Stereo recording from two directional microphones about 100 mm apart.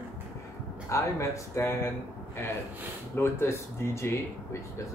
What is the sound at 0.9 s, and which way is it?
Speech, 30° left (ahead or behind).